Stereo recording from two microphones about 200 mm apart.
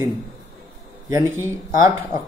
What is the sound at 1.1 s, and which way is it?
Speech, 15° right (ahead or behind).